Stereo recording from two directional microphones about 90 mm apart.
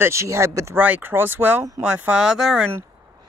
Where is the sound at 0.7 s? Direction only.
15° right (ahead or behind).